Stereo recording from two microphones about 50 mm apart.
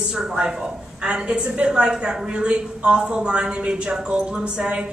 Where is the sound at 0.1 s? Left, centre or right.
Centre.